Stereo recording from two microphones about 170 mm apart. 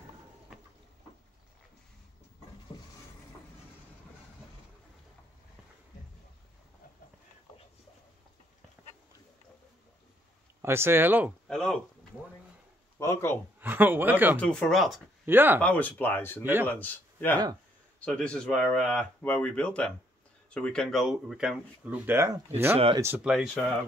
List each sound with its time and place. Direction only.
10.6 s speech: 15° right (ahead or behind)
11.4 s speech: centre (ahead or behind)
13.0 s a sound: 15° left (ahead or behind)
13.6 s speech: 10° right (ahead or behind)
14.4 s speech: 5° left (ahead or behind)
15.2 s speech: 10° right (ahead or behind)
15.6 s speech: 10° left (ahead or behind); by 23.3 s 15° right (ahead or behind)
23.3 s speech: centre (ahead or behind)